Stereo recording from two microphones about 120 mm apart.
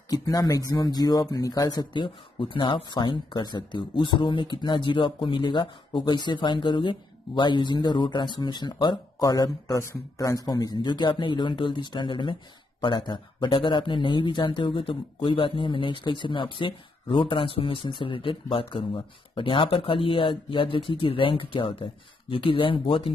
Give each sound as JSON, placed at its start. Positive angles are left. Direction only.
{"t": 0.1, "sound": "speech", "side_deg": 30}